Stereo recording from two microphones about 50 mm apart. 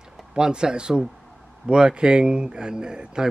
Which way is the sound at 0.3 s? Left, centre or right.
Centre.